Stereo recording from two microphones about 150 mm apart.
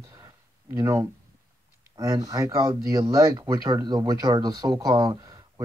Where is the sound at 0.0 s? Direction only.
25° right (ahead or behind).